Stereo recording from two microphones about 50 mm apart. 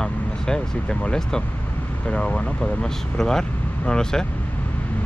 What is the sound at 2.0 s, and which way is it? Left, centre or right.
Speech, centre.